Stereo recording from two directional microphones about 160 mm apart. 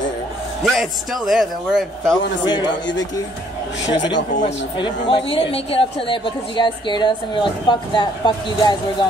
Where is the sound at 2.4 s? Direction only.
30° left (ahead or behind).